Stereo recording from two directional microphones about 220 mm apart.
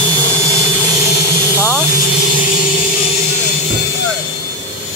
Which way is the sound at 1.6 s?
5° left (ahead or behind).